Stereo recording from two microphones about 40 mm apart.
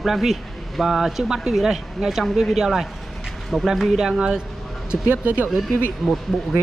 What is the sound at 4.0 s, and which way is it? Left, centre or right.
Speech, right.